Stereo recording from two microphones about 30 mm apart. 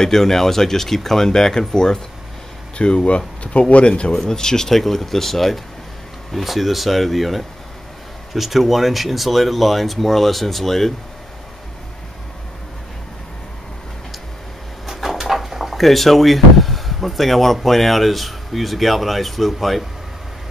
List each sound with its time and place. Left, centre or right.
0.0 s speech: centre
2.8 s speech: left
3.5 s speech: left
4.2 s speech: left
4.7 s speech: centre
14.9 s speech: centre